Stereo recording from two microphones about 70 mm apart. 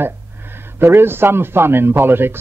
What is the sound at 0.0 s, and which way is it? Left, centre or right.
Speech, right.